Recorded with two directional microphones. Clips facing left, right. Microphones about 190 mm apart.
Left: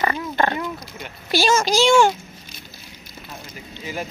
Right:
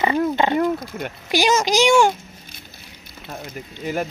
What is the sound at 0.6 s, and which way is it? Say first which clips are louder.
Speech: right 9 dB; 50° right (ahead or behind).